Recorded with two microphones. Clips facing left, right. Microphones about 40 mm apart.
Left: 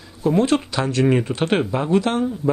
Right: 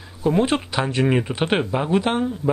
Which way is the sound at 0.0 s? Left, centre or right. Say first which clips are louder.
Left 1 dB; centre.